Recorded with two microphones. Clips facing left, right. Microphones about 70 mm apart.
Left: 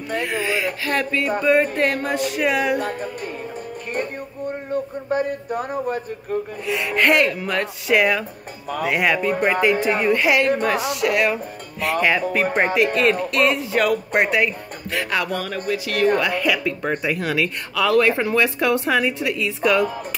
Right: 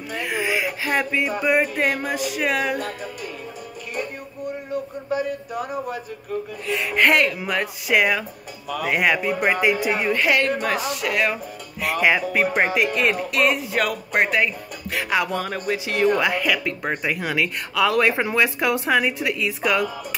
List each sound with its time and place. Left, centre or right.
0.2 s speech: centre
5.1 s speech: left
6.7 s speech: centre
10.2 s a woman's voice: centre
11.8 s speech: centre
15.0 s speech: centre
15.3 s music: right
15.7 s speech: right
16.3 s speech: centre